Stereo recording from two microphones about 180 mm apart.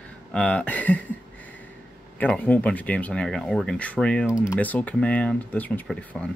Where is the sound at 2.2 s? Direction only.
10° left (ahead or behind).